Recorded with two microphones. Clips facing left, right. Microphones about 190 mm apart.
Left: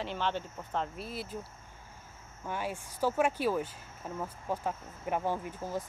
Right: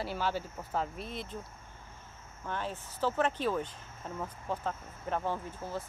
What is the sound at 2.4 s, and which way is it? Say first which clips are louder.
Speech: left 1 dB; 10° left (ahead or behind).